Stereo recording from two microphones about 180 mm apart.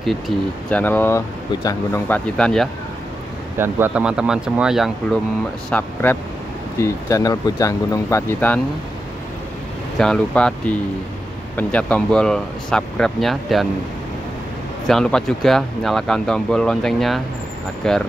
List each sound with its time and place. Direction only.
0.7 s speech: 10° left (ahead or behind)
3.5 s speech: 10° right (ahead or behind)
5.7 s speech: 10° left (ahead or behind)
9.9 s speech: 5° left (ahead or behind)
11.5 s speech: 5° left (ahead or behind)
14.9 s speech: 5° left (ahead or behind)